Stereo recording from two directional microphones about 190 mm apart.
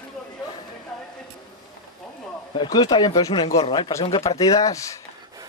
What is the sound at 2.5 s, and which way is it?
Speech, 25° left (ahead or behind).